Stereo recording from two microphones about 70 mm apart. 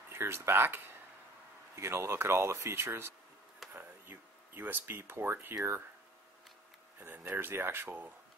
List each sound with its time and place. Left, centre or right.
0.1 s speech: right
7.2 s speech: right